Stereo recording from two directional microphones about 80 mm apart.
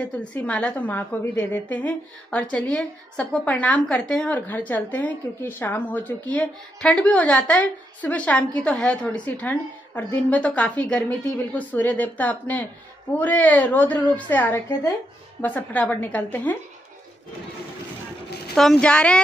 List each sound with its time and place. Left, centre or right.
0.3 s a woman's voice: centre
3.9 s speech: centre
4.3 s a woman's voice: left
18.5 s a woman's voice: centre